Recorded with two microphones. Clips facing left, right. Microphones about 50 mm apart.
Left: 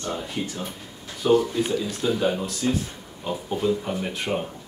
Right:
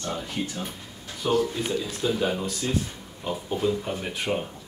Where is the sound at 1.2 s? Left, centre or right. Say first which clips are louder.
Left 4 dB; centre.